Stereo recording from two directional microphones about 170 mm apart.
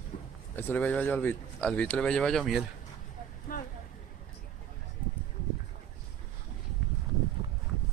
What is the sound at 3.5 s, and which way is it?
Vehicle, 55° left (ahead or behind).